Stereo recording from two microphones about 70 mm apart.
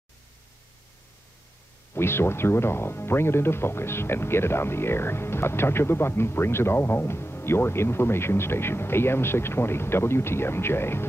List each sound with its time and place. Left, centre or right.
2.0 s speech: left